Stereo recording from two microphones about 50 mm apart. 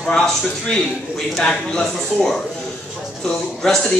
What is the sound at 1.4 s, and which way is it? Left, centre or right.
Speech, centre.